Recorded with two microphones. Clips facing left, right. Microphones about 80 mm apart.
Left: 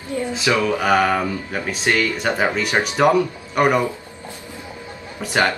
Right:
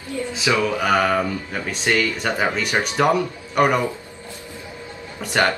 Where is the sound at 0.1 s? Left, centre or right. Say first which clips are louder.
Left 3 dB; left.